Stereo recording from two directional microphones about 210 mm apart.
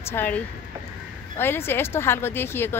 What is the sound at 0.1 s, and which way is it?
Speech, 10° left (ahead or behind).